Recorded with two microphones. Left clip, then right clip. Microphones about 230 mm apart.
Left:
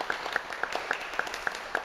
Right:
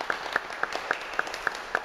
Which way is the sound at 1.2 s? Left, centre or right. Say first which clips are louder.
Right 3 dB; right.